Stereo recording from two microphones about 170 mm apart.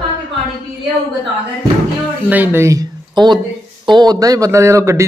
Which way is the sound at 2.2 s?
10° right (ahead or behind).